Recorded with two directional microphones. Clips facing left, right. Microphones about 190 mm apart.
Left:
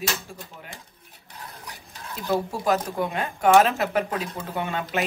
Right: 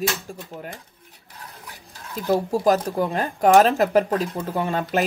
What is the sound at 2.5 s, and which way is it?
Speech, 35° right (ahead or behind).